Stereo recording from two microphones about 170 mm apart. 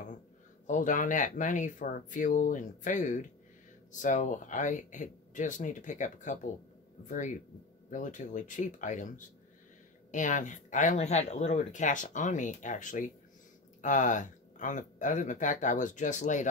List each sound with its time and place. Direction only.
0.7 s speech: 50° left (ahead or behind)